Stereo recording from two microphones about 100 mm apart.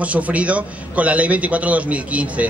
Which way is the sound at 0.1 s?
15° right (ahead or behind).